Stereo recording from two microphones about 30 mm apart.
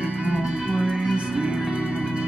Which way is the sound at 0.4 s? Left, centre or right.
Right.